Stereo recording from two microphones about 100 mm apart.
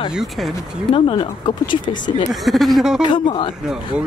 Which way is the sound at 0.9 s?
65° left (ahead or behind).